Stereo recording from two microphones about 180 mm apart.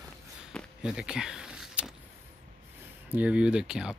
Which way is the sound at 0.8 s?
5° right (ahead or behind).